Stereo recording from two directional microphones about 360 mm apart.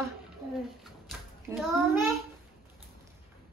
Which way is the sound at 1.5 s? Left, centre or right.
Centre.